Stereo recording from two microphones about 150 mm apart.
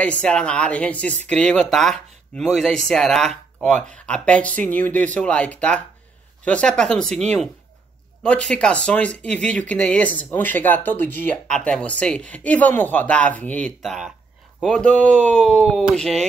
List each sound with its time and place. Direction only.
0.0 s speech: 5° left (ahead or behind)